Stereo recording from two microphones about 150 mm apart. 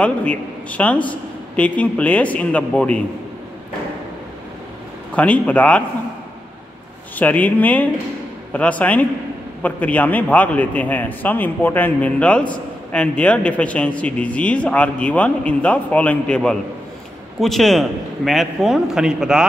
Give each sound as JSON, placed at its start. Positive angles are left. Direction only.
{"t": 0.0, "sound": "speech", "side_deg": 10}
{"t": 5.1, "sound": "speech", "side_deg": 10}
{"t": 7.2, "sound": "a man's voice", "side_deg": 10}